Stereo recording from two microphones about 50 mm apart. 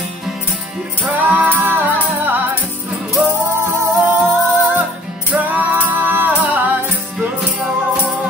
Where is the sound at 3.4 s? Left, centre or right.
Right.